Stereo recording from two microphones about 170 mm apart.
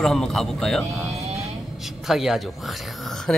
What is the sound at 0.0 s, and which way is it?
Mantra, centre (ahead or behind).